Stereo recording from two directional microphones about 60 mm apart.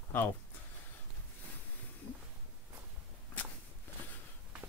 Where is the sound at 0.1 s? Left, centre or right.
Left.